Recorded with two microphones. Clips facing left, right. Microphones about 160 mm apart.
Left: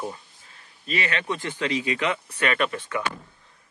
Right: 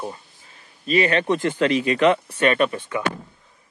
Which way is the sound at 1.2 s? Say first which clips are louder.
Right 8 dB; 55° right (ahead or behind).